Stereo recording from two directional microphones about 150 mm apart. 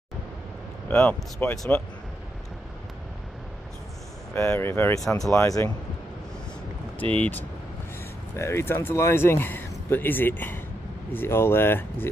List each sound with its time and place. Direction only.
0.8 s speech: 10° left (ahead or behind)
4.3 s speech: 15° left (ahead or behind)
7.2 s speech: 10° left (ahead or behind)